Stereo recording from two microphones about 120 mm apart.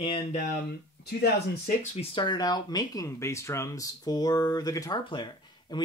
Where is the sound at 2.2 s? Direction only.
35° left (ahead or behind).